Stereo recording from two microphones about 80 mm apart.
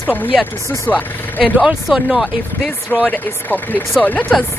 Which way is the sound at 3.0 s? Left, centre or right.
Left.